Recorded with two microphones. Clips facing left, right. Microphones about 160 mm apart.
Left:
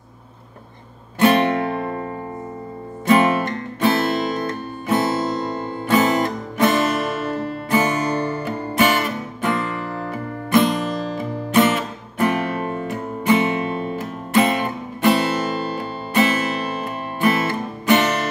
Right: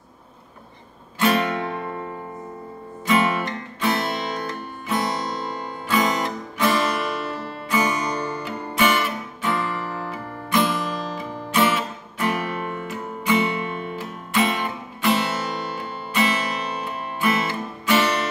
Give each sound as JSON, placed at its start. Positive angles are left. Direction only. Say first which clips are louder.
{"t": 1.3, "sound": "music", "louder": "left 5 dB", "side_deg": 50}
{"t": 3.1, "sound": "guitar", "louder": "left 5 dB", "side_deg": 45}
{"t": 4.2, "sound": "music", "louder": "left 5 dB", "side_deg": 50}